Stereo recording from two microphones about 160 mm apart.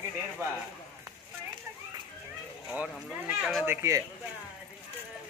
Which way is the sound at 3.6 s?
15° right (ahead or behind).